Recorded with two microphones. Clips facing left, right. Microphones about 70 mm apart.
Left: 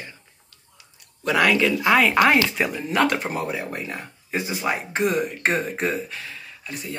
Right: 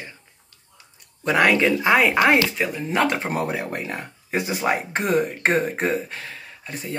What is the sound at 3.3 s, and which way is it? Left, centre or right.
Speech, right.